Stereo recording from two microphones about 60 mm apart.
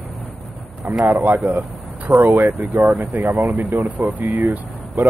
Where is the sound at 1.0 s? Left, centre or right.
Right.